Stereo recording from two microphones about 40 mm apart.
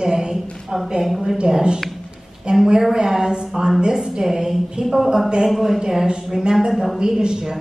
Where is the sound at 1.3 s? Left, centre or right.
Centre.